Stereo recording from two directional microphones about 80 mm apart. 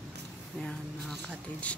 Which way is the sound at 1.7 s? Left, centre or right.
Centre.